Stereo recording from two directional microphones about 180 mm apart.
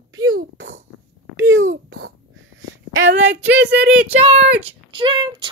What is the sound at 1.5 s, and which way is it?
Speech, 90° right.